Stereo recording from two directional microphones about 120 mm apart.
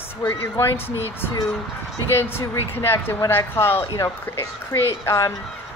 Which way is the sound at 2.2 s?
20° left (ahead or behind).